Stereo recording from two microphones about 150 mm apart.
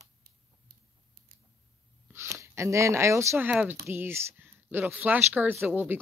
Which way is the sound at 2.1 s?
20° right (ahead or behind).